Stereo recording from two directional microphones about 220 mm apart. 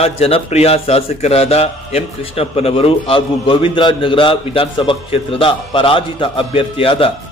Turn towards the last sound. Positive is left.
turn(degrees=25)  # may be behind; listen again after turning